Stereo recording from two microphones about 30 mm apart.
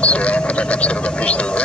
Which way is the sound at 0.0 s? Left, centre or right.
Left.